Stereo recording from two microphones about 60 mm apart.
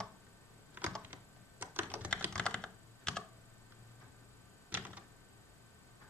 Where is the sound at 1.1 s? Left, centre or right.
Right.